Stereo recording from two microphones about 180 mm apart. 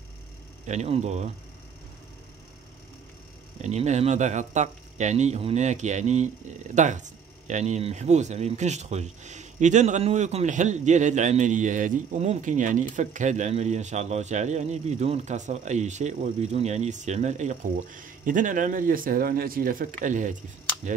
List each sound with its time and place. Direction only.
0.7 s speech: 35° right (ahead or behind)
3.6 s speech: 40° right (ahead or behind)
20.8 s cap gun: 45° right (ahead or behind)